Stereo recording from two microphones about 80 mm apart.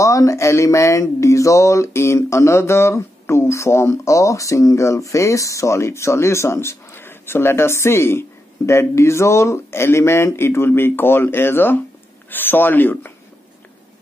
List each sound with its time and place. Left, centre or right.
0.0 s speech: left